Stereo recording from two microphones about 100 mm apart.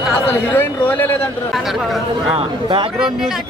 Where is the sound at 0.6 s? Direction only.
20° left (ahead or behind).